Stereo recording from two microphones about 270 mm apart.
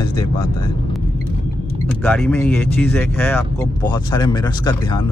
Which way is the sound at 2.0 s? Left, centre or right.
Centre.